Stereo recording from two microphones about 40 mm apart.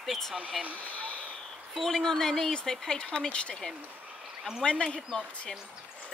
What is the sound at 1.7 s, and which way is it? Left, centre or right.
Speech, centre.